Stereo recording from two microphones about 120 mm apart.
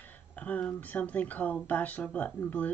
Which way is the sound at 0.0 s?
15° left (ahead or behind).